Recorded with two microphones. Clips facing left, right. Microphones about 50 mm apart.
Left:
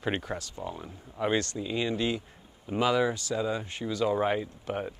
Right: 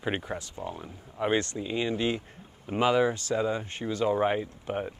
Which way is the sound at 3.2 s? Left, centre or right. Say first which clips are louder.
Right 2 dB; right.